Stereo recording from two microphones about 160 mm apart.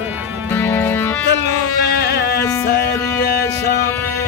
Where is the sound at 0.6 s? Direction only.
15° left (ahead or behind).